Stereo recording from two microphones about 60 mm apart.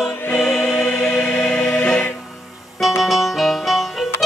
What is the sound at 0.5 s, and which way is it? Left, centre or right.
Music, centre.